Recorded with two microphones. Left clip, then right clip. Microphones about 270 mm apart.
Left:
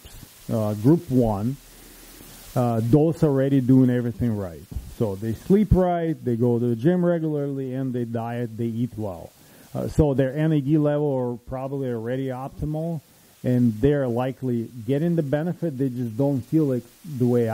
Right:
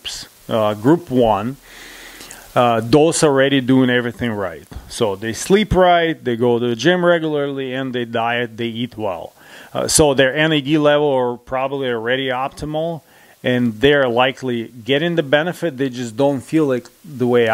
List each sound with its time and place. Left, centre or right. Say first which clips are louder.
0.5 s speech: right 7 dB; centre
2.5 s speech: right 9 dB; centre
12.6 s speech: right 9 dB; right
13.4 s speech: right 6 dB; centre
16.2 s speech: right 8 dB; right
16.5 s speech: right 6 dB; centre